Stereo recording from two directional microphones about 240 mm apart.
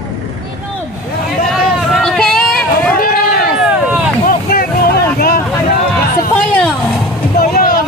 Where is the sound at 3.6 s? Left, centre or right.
Centre.